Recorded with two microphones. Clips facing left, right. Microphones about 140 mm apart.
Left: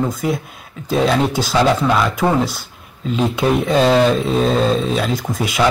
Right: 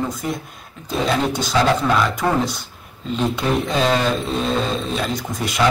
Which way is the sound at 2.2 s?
15° left (ahead or behind).